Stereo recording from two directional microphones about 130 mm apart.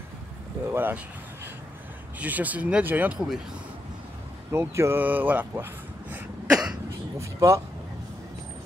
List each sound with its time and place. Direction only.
0.7 s speech: 15° right (ahead or behind)
4.5 s a sound: 20° right (ahead or behind)
7.2 s speech: 25° right (ahead or behind)